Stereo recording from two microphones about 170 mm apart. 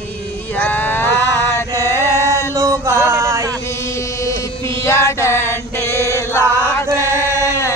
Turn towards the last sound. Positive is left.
turn(degrees=-15)  # may be behind; listen again after turning